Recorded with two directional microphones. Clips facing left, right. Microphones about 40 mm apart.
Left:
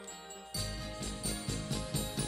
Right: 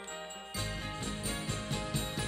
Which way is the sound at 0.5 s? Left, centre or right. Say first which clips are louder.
Right 2 dB; right.